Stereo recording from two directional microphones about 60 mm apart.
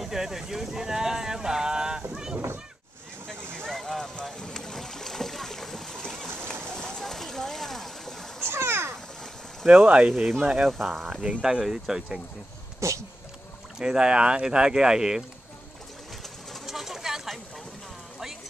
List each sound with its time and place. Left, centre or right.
0.0 s a sound: centre
3.5 s boat: centre
6.7 s a sound: centre
8.5 s splash: right
9.7 s speech: centre
12.8 s speech: right
13.7 s speech: centre
16.6 s pigeon: centre